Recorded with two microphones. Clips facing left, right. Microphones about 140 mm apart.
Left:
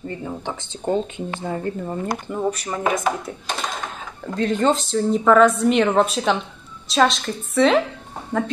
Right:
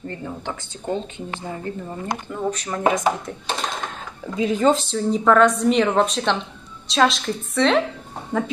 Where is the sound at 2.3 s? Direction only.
10° left (ahead or behind).